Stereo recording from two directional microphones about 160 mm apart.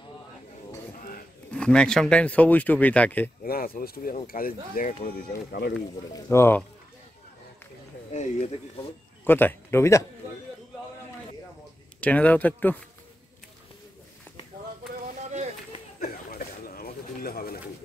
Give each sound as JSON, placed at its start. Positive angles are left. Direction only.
{"t": 1.5, "sound": "speech", "side_deg": 5}
{"t": 3.4, "sound": "speech", "side_deg": 70}
{"t": 6.2, "sound": "speech", "side_deg": 15}
{"t": 8.1, "sound": "speech", "side_deg": 45}
{"t": 9.2, "sound": "a man's voice", "side_deg": 10}
{"t": 12.0, "sound": "speech", "side_deg": 10}
{"t": 16.0, "sound": "a sound", "side_deg": 70}